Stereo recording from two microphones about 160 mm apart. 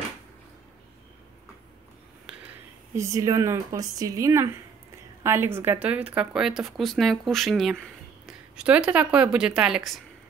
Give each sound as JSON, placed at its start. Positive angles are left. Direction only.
{"t": 3.0, "sound": "a woman's voice", "side_deg": -20}